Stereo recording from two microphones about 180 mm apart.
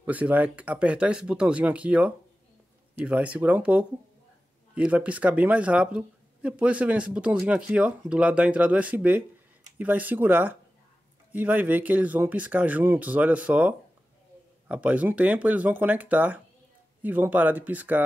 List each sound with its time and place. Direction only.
0.0 s speech: 10° right (ahead or behind)